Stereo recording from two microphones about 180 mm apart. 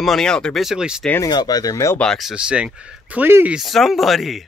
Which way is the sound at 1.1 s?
20° left (ahead or behind).